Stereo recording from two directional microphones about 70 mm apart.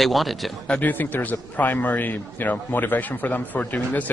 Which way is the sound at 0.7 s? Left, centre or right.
Left.